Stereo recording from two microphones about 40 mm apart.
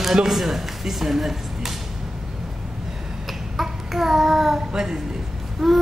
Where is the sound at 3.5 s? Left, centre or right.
Centre.